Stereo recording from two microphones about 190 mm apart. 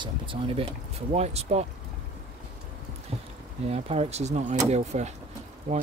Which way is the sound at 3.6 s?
35° right (ahead or behind).